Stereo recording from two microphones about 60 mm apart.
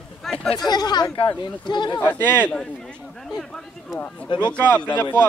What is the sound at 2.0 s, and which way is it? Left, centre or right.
Speech, left.